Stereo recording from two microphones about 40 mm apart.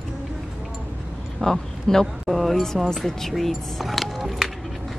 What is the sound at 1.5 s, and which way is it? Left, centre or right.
Speech, centre.